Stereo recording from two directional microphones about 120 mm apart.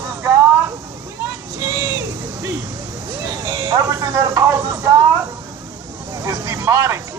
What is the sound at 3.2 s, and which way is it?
Speech, 30° right (ahead or behind).